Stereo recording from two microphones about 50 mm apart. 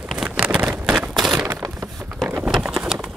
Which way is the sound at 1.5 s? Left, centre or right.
Right.